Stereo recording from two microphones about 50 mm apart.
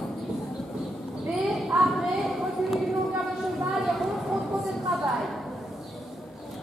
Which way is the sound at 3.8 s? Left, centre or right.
Centre.